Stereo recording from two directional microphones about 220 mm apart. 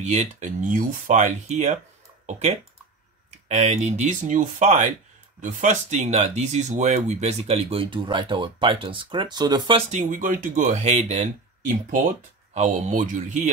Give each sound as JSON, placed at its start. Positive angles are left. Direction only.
{"t": 0.0, "sound": "speech", "side_deg": -30}
{"t": 12.5, "sound": "speech", "side_deg": -30}